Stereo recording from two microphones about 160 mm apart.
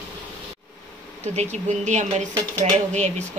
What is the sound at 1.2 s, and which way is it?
Speech, 45° right (ahead or behind).